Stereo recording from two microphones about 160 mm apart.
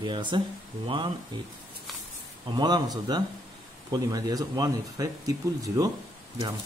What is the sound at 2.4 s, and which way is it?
Speech, 25° right (ahead or behind).